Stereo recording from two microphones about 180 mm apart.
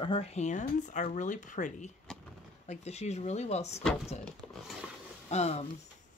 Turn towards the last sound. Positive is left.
turn(degrees=35)  # may be behind; listen again after turning